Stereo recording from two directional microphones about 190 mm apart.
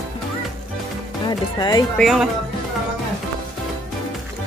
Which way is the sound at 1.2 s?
20° left (ahead or behind).